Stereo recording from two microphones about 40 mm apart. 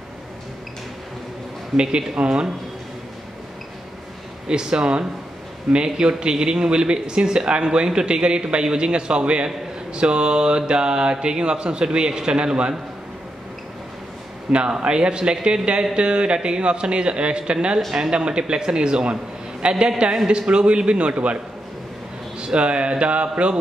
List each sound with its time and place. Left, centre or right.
1.8 s speech: right
4.5 s speech: right
14.5 s speech: right
22.4 s speech: right